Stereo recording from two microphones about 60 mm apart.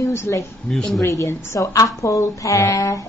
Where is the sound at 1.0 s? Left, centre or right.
Left.